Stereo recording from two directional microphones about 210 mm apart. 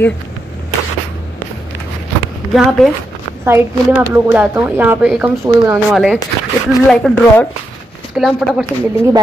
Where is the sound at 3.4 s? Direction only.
10° right (ahead or behind).